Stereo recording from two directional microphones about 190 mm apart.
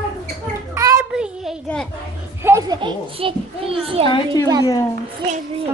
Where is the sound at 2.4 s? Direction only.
20° right (ahead or behind).